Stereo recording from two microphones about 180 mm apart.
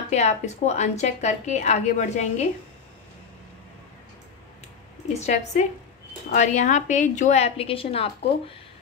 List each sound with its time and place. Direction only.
0.1 s a woman's voice: 40° left (ahead or behind)
5.2 s a woman's voice: 40° left (ahead or behind)